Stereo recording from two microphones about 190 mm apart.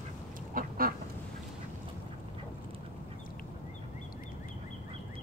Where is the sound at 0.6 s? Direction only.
50° right (ahead or behind).